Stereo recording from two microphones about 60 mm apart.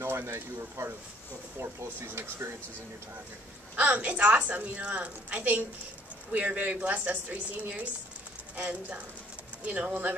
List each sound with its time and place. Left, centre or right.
0.0 s speech: right
3.7 s a woman's voice: right